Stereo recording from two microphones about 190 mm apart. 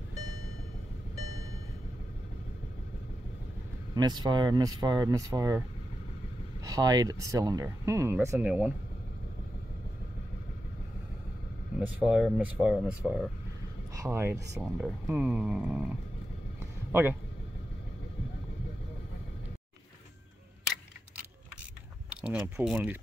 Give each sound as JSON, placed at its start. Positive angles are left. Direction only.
{"t": 3.9, "sound": "speech", "side_deg": -20}
{"t": 6.6, "sound": "speech", "side_deg": -20}
{"t": 11.8, "sound": "speech", "side_deg": -5}
{"t": 13.9, "sound": "speech", "side_deg": -15}
{"t": 22.1, "sound": "speech", "side_deg": -5}